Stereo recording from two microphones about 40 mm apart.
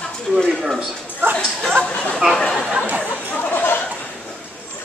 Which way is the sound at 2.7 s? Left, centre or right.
Right.